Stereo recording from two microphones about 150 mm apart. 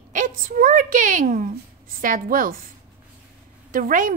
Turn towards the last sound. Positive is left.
turn(degrees=-65)  # may be behind; listen again after turning